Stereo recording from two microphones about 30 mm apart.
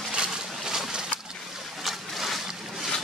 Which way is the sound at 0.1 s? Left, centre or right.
Right.